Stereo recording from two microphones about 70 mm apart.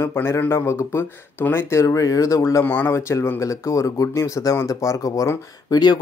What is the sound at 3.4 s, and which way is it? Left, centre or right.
Speech, left.